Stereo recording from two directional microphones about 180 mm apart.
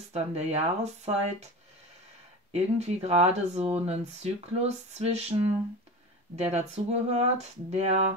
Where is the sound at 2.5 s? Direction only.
35° right (ahead or behind).